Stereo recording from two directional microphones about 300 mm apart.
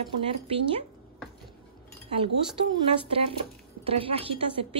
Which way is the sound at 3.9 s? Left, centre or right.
Centre.